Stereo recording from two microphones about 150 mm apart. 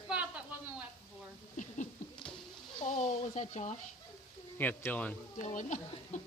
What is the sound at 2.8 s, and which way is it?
Speech, 55° left (ahead or behind).